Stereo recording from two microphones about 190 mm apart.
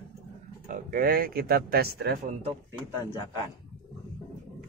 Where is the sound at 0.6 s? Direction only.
45° right (ahead or behind).